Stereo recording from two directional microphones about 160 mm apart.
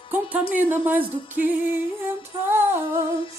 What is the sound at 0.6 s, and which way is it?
Music, 10° right (ahead or behind).